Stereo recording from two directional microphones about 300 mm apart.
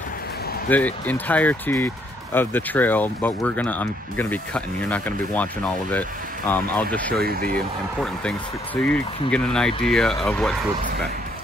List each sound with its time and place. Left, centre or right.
0.7 s speech: centre
7.2 s speech: right
8.0 s speech: centre